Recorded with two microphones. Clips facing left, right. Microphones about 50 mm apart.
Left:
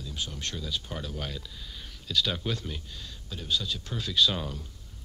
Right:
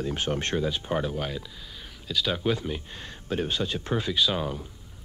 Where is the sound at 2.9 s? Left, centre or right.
Right.